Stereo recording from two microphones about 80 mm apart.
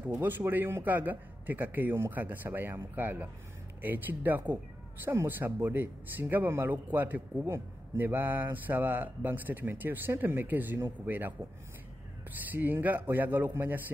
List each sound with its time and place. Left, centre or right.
0.2 s speech: right
12.4 s speech: right